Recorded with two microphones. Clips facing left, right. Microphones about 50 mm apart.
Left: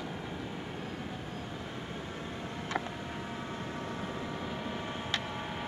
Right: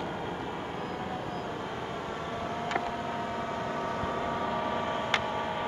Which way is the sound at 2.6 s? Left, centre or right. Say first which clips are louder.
Right 3 dB; right.